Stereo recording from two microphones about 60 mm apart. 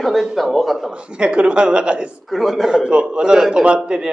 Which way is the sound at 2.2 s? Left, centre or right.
Centre.